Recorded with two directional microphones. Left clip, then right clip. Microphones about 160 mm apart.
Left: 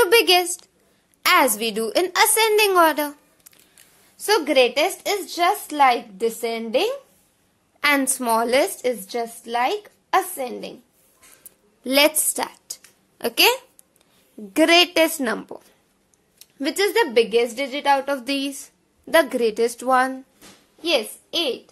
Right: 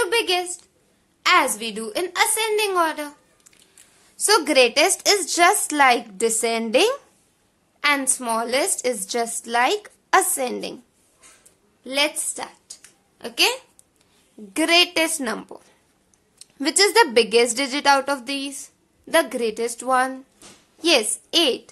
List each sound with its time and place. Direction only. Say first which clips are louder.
0.0 s a sound: left 5 dB; 35° left (ahead or behind)
1.2 s a woman's voice: left 1 dB; 35° left (ahead or behind)
4.2 s a woman's voice: right 1 dB; centre (ahead or behind)
7.8 s a woman's voice: left 1 dB; 25° left (ahead or behind)
8.8 s a woman's voice: right 1 dB; 5° right (ahead or behind)
11.8 s a woman's voice: left 5 dB; 45° left (ahead or behind)
14.5 s a woman's voice: left 2 dB; 25° left (ahead or behind)
16.3 s a woman's voice: right 3 dB; centre (ahead or behind)
18.2 s a woman's voice: left 3 dB; 15° left (ahead or behind)
20.8 s a woman's voice: right 3 dB; 15° right (ahead or behind)